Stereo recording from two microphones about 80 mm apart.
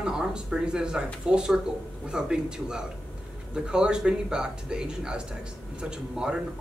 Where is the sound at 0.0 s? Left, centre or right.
Centre.